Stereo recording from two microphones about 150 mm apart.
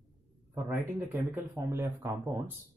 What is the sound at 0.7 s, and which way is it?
Speech, 15° right (ahead or behind).